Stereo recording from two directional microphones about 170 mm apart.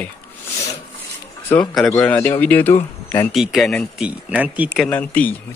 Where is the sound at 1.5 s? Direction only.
5° left (ahead or behind).